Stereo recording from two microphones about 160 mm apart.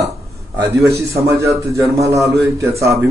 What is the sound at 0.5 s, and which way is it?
A man's voice, 20° right (ahead or behind).